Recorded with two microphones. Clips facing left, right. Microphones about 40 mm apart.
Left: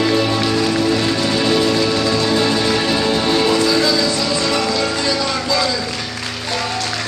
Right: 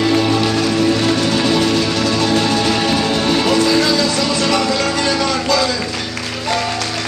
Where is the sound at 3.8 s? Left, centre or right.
Right.